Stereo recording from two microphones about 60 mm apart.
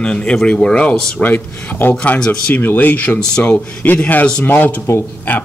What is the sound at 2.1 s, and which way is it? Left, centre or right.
Speech, centre.